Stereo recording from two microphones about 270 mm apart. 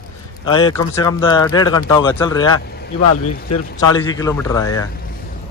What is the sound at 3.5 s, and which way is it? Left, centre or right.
Speech, left.